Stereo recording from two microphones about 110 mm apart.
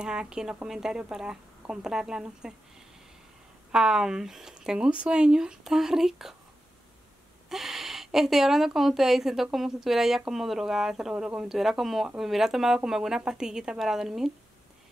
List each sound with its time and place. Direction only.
0.0 s speech: 5° right (ahead or behind)
3.7 s a woman's voice: 5° right (ahead or behind)
7.4 s a woman's voice: centre (ahead or behind)